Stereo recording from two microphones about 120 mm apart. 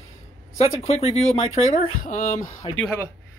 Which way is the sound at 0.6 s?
65° left (ahead or behind).